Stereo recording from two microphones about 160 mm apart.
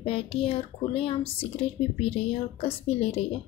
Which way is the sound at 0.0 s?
35° left (ahead or behind).